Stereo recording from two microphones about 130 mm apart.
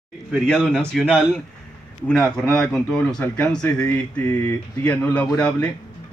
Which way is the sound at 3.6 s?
25° left (ahead or behind).